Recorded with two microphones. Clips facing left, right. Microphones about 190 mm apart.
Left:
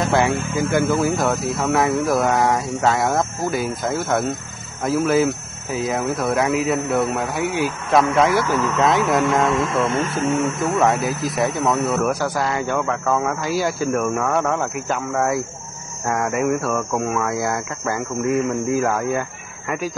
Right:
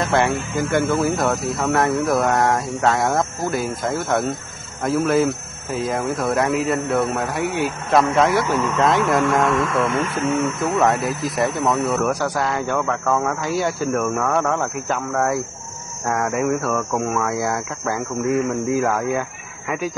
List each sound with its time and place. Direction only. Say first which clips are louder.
0.0 s speech: left 1 dB; centre (ahead or behind)
9.5 s speech: even; 25° left (ahead or behind)
10.1 s speech: left 1 dB; centre (ahead or behind)